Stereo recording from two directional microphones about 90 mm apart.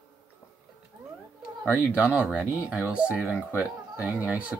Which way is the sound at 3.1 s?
25° left (ahead or behind).